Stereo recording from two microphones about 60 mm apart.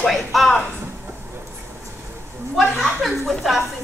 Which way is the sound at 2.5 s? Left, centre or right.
Centre.